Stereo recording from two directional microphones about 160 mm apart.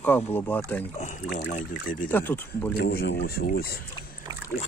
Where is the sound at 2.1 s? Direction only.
15° left (ahead or behind).